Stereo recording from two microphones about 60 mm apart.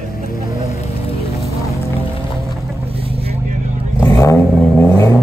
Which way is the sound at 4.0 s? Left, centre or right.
Left.